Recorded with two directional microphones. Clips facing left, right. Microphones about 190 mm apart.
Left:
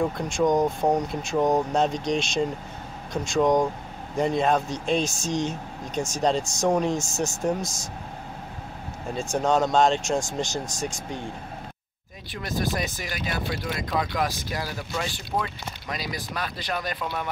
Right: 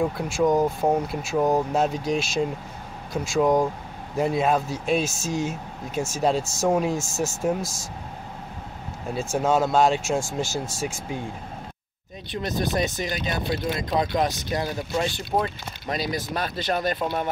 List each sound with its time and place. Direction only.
0.0 s speech: 5° right (ahead or behind)
9.1 s speech: 5° right (ahead or behind)
12.3 s speech: 20° right (ahead or behind)